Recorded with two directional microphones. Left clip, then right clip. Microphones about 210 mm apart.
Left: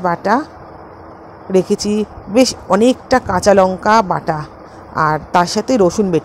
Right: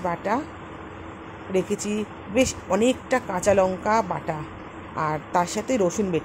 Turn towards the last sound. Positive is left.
turn(degrees=35)  # may be behind; listen again after turning